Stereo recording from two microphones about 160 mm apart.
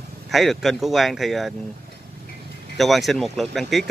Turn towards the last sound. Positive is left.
turn(degrees=0)  # may be behind; listen again after turning